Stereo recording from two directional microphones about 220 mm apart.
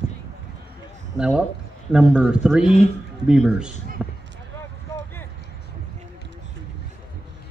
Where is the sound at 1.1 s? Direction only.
5° right (ahead or behind).